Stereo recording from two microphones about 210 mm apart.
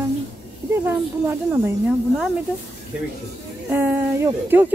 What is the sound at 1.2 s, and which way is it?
Speech, 10° right (ahead or behind).